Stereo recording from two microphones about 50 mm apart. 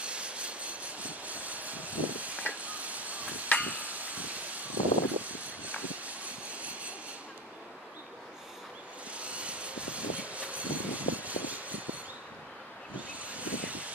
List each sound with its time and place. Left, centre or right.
0.0 s train: right
2.6 s a sound: right
3.6 s vehicle: right
9.1 s vehicle: right
13.2 s vehicle: right